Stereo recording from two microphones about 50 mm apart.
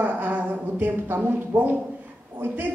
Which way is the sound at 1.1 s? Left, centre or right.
Right.